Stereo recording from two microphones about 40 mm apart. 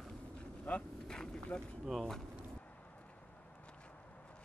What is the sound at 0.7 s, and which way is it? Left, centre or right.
Vehicle, left.